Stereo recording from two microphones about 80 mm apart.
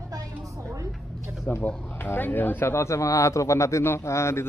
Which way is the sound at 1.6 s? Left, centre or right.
Left.